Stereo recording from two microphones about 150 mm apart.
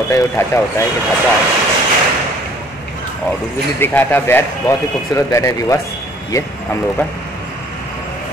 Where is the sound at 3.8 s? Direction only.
15° left (ahead or behind).